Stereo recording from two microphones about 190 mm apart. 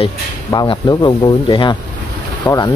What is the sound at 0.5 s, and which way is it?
Speech, 20° left (ahead or behind).